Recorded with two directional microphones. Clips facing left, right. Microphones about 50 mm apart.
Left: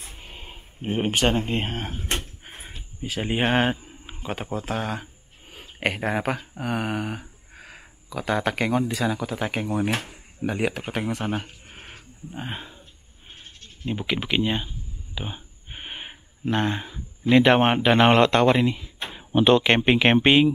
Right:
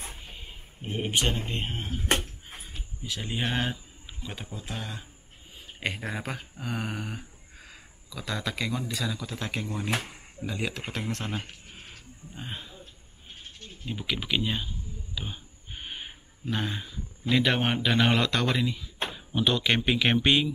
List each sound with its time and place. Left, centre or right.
0.2 s speech: left
2.1 s door: left
4.5 s speech: left
4.7 s speech: left
5.6 s a sound: left
6.5 s a sound: left
8.2 s speech: left
9.2 s speech: centre
11.2 s a sound: left
13.8 s speech: left